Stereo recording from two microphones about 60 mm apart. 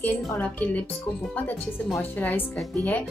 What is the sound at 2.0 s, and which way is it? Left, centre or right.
Speech, left.